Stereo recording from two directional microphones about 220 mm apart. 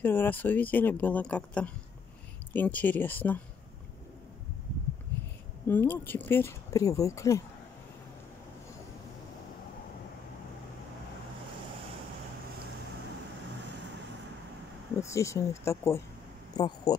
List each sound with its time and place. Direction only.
0.0 s speech: 10° left (ahead or behind)
5.7 s speech: 10° left (ahead or behind)
15.0 s speech: 15° left (ahead or behind)